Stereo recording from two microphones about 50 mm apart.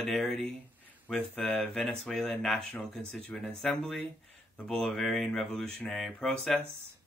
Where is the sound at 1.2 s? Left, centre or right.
Left.